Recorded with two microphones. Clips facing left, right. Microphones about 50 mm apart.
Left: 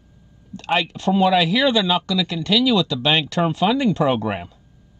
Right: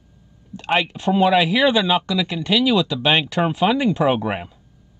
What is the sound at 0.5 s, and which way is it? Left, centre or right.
Speech, centre.